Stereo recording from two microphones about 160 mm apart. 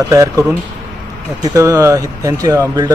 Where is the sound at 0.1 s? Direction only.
20° right (ahead or behind).